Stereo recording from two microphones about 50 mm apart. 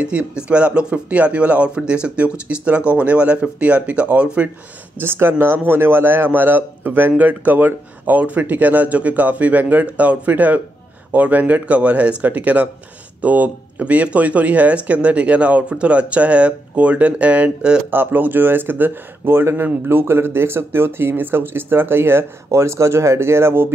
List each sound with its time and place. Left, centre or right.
0.0 s speech: right
5.0 s a man's voice: right
17.9 s speech: right
22.5 s speech: right